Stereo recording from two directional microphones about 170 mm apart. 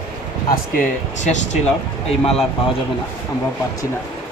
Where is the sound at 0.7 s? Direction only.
45° left (ahead or behind).